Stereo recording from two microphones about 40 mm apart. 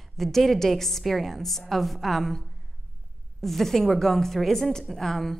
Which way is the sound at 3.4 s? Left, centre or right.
Centre.